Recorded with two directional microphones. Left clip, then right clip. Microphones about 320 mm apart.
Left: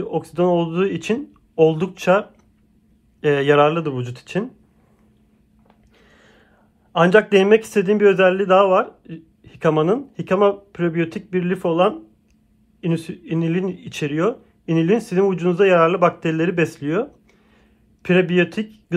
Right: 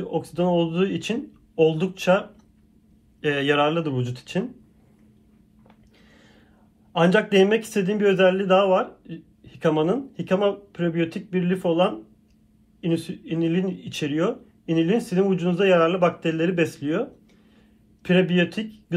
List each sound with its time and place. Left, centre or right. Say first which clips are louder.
0.0 s speech: left 5 dB; left
3.2 s speech: left 6 dB; centre
6.0 s a sound: left 3 dB; centre
6.9 s speech: left 6 dB; centre
12.8 s speech: left 1 dB; left
18.0 s speech: left 4 dB; centre